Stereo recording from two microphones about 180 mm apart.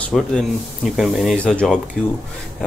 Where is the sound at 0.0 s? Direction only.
5° left (ahead or behind).